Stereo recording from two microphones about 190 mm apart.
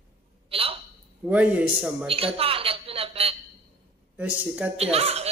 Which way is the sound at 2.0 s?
30° right (ahead or behind).